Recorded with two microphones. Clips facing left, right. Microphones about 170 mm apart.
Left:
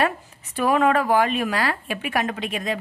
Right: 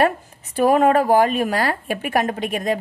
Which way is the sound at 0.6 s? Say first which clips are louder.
Right 4 dB; 40° right (ahead or behind).